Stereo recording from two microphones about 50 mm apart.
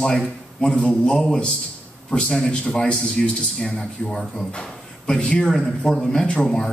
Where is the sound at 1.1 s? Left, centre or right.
Centre.